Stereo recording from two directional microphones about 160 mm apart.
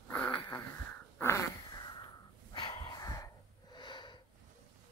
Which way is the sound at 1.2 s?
15° left (ahead or behind).